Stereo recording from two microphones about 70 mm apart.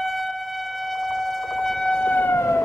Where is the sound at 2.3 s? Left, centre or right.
Left.